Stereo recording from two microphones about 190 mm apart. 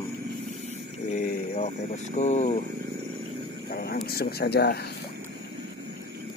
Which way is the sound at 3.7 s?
55° left (ahead or behind).